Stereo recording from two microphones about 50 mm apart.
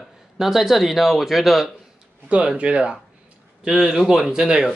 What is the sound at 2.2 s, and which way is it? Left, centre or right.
Speech, right.